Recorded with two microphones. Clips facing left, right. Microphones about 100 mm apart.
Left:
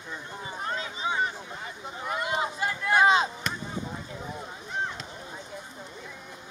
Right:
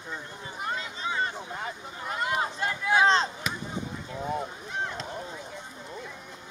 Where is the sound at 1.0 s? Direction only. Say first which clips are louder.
Left 2 dB; 20° left (ahead or behind).